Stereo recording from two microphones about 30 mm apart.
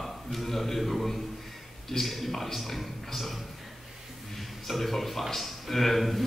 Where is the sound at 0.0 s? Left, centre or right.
Centre.